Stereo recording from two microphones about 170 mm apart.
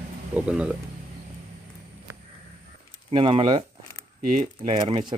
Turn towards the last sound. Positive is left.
turn(degrees=-25)  # may be behind; listen again after turning